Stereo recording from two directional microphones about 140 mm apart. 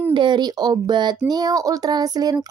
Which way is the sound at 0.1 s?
35° right (ahead or behind).